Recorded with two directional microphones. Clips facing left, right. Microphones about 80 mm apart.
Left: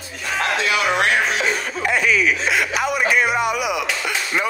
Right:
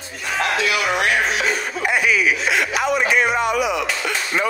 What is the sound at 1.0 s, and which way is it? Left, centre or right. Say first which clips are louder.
Music: left 1 dB; left.